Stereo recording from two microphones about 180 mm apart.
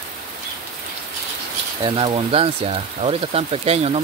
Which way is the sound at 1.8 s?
30° right (ahead or behind).